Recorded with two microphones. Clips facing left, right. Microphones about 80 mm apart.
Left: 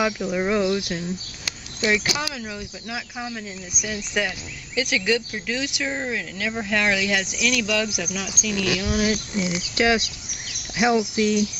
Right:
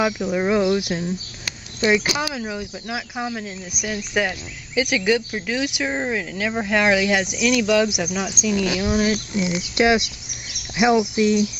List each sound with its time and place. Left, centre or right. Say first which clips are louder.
0.0 s speech: right 2 dB; centre
2.1 s speech: right 4 dB; centre
5.9 s speech: right 3 dB; right
6.1 s speech: right 4 dB; centre
8.9 s speech: right 2 dB; centre